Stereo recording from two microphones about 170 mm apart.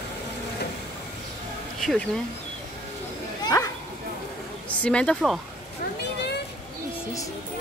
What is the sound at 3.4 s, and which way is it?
Bow-wow, 25° left (ahead or behind).